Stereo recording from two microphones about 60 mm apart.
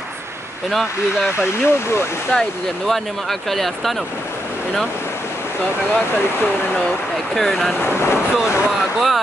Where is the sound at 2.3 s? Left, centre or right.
Centre.